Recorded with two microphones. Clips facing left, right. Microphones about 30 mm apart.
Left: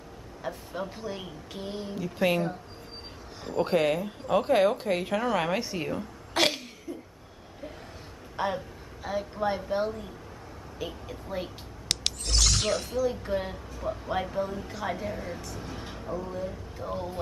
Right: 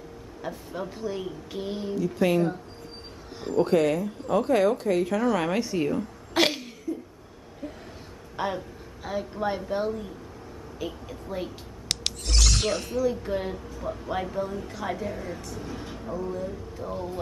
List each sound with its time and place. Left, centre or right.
0.4 s a woman's voice: centre
1.5 s a woman's voice: centre
2.0 s speech: centre
3.5 s speech: centre
8.4 s a woman's voice: centre